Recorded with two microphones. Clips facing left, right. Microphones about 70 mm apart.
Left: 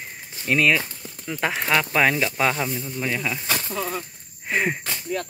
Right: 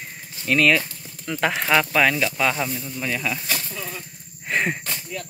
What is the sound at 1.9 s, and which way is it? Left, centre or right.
Speech, left.